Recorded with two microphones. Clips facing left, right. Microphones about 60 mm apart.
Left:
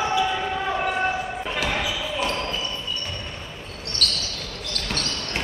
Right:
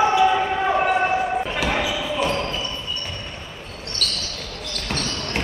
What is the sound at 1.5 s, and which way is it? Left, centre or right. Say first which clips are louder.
Basketball bounce: right 3 dB; centre.